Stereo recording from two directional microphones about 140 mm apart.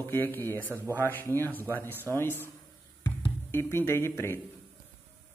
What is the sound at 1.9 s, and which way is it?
Speech, 15° right (ahead or behind).